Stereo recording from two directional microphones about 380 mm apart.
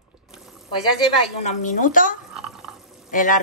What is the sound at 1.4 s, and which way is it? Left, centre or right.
A woman's voice, centre.